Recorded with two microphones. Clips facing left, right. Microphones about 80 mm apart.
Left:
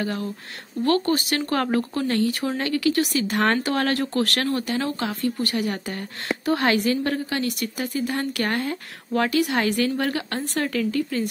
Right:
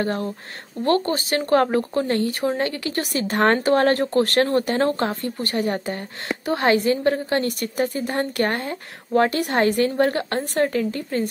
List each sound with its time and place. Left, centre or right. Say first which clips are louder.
0.0 s speech: right 3 dB; right
7.2 s speech: right 3 dB; right
9.3 s speech: right 2 dB; right